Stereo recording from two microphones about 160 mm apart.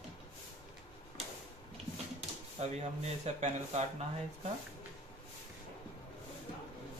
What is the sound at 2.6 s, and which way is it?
Speech, 45° right (ahead or behind).